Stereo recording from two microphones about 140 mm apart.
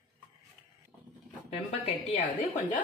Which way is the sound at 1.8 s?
50° left (ahead or behind).